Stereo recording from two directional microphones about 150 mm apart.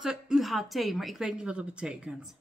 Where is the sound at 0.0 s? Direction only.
5° right (ahead or behind).